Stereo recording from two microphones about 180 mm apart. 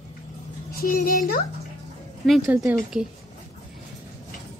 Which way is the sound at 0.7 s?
50° left (ahead or behind).